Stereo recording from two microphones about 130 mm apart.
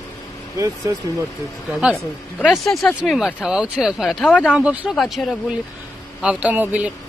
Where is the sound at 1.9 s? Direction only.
5° left (ahead or behind).